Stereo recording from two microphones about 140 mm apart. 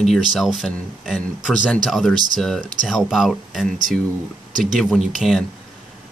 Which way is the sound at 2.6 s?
70° right (ahead or behind).